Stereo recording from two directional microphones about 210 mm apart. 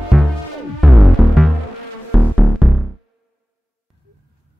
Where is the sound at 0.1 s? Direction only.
Centre (ahead or behind).